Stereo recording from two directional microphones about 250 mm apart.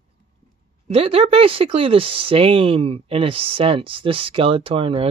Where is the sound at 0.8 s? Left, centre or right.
Right.